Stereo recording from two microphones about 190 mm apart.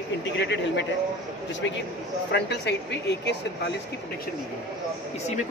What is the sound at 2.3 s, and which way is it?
Speech, 65° left (ahead or behind).